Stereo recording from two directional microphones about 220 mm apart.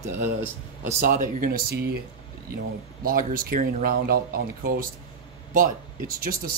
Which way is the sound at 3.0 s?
40° right (ahead or behind).